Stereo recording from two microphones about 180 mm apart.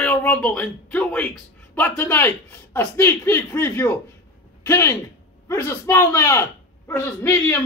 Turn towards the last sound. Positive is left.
turn(degrees=15)  # may be behind; listen again after turning